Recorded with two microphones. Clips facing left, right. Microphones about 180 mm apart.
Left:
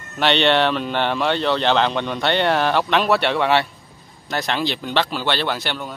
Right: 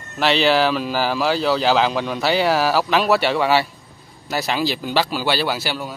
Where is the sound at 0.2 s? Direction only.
Centre (ahead or behind).